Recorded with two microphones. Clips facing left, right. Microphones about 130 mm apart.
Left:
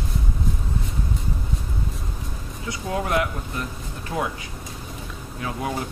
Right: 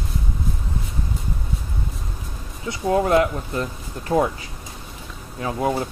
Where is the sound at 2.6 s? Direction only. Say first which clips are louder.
Right 7 dB; 30° right (ahead or behind).